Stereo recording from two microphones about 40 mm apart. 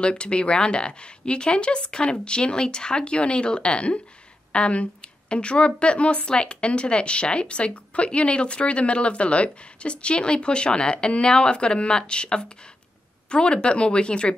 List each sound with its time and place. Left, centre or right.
0.0 s speech: left